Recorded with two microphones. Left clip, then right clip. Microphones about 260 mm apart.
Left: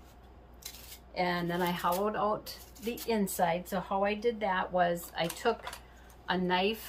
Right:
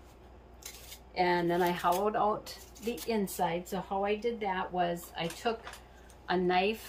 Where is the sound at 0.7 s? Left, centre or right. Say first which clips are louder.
Left 1 dB; centre.